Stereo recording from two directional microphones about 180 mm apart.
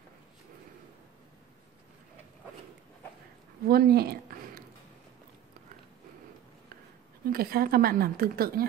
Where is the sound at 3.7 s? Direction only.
60° right (ahead or behind).